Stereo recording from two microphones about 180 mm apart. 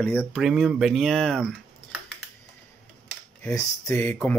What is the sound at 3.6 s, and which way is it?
Speech, 15° left (ahead or behind).